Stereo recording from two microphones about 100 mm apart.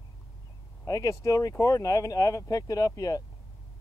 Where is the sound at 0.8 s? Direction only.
35° left (ahead or behind).